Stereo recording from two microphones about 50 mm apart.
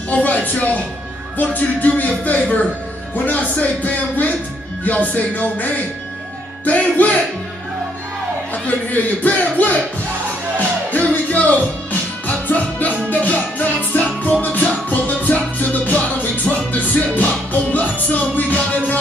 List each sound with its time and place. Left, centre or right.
0.1 s speech: left
1.4 s speech: left
8.6 s speech: left
10.9 s music: left